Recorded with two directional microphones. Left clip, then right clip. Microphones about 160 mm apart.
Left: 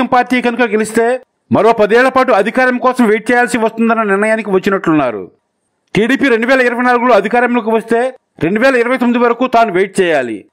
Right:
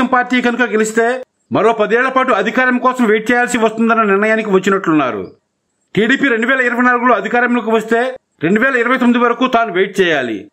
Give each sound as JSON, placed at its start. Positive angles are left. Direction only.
{"t": 0.0, "sound": "a man's voice", "side_deg": 35}